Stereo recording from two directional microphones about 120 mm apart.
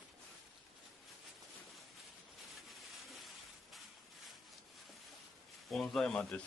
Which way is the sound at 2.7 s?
Centre (ahead or behind).